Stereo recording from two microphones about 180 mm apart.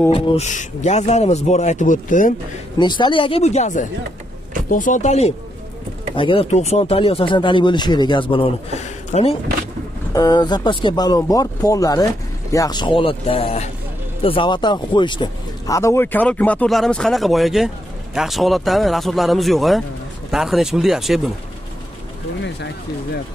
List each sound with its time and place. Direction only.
0.1 s speech: 35° left (ahead or behind)
2.8 s speech: 25° left (ahead or behind)
10.1 s speech: 20° left (ahead or behind); by 21.3 s centre (ahead or behind)